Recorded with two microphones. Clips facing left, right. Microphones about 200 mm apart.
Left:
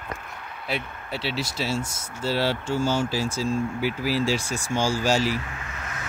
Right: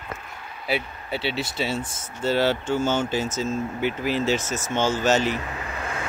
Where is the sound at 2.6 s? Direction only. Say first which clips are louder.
Right 1 dB; 25° right (ahead or behind).